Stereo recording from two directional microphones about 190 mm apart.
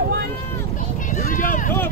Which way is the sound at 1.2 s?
45° left (ahead or behind).